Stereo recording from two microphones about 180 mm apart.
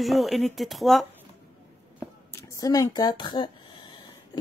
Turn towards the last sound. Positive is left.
turn(degrees=25)  # may be behind; listen again after turning